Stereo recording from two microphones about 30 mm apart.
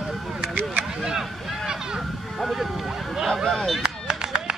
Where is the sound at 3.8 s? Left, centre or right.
Right.